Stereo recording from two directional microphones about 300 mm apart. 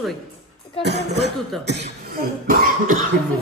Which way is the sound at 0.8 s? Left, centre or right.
Right.